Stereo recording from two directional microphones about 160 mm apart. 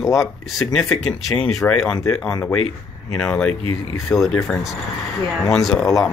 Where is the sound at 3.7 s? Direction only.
20° left (ahead or behind).